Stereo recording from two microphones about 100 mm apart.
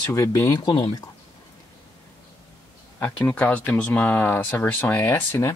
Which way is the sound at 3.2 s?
15° left (ahead or behind).